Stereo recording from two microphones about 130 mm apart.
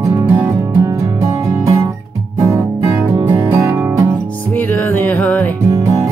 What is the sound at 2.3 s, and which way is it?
Guitar, 25° right (ahead or behind).